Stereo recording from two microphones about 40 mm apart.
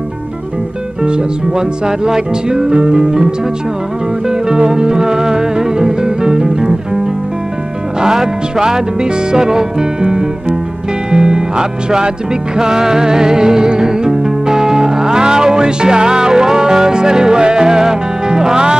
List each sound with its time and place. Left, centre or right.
1.0 s music: right
8.0 s music: centre